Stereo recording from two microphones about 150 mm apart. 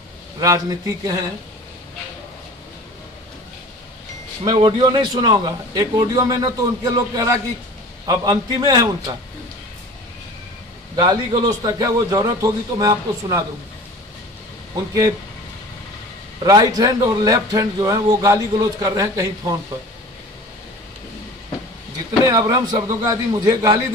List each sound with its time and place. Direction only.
0.4 s speech: 25° right (ahead or behind)
4.5 s speech: 30° right (ahead or behind)
11.0 s speech: 25° right (ahead or behind)
16.4 s speech: 25° right (ahead or behind)
22.2 s speech: 25° right (ahead or behind)